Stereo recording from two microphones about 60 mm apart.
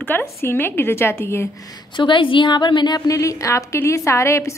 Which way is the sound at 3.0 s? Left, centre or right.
Left.